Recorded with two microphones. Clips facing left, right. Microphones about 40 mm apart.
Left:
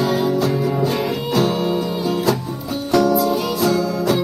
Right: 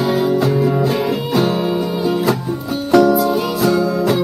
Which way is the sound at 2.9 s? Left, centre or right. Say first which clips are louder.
Right 4 dB; centre.